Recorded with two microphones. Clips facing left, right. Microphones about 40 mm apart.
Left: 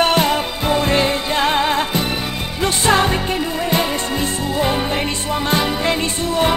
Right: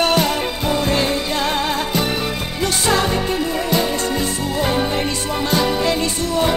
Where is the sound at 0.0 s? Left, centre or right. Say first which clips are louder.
Left 1 dB; left.